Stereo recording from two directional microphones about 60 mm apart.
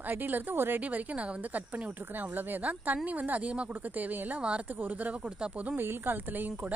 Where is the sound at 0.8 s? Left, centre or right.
Right.